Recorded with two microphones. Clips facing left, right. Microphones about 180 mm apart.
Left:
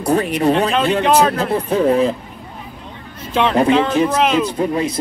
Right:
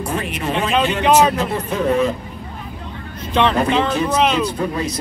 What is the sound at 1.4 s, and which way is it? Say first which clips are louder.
Speech: left 4 dB; 35° left (ahead or behind).